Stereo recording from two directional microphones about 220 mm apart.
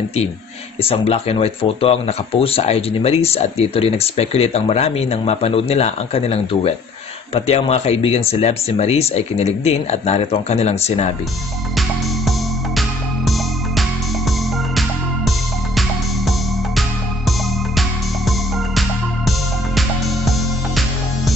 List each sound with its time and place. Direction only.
0.8 s speech: 25° left (ahead or behind)
12.3 s music: centre (ahead or behind)
14.8 s music: centre (ahead or behind)
18.8 s music: centre (ahead or behind)